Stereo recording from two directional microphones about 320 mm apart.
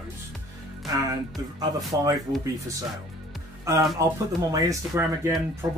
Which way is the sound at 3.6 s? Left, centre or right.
Centre.